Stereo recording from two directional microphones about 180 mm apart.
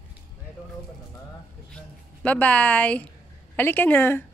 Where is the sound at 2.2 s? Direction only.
10° left (ahead or behind).